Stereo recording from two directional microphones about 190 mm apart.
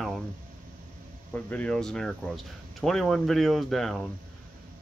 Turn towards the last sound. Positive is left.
turn(degrees=0)  # may be behind; listen again after turning